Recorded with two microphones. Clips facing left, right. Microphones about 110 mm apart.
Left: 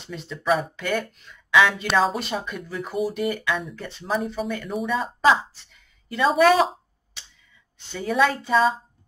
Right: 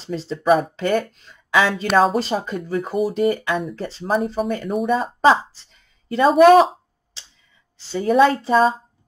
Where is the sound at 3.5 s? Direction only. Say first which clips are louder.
Right 4 dB; 40° right (ahead or behind).